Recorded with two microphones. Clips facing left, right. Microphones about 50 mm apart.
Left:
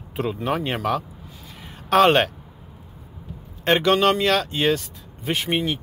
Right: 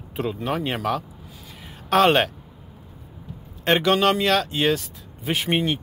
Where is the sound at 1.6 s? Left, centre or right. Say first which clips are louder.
Left 2 dB; centre.